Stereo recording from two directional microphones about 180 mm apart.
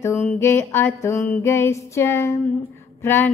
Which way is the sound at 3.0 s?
15° left (ahead or behind).